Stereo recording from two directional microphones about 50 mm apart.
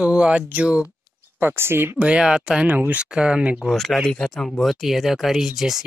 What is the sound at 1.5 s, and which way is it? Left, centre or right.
Speech, right.